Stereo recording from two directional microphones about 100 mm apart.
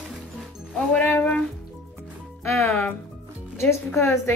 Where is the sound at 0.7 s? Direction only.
15° left (ahead or behind).